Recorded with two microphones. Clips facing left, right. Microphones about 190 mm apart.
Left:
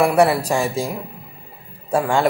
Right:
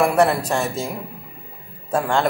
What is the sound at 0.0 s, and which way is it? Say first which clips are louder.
Speech: left 2 dB; 10° left (ahead or behind).